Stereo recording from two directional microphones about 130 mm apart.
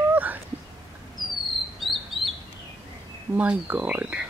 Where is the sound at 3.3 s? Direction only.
10° right (ahead or behind).